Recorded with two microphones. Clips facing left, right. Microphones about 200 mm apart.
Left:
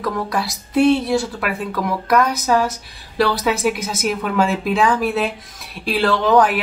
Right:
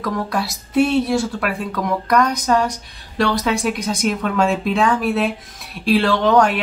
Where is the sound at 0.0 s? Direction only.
Centre (ahead or behind).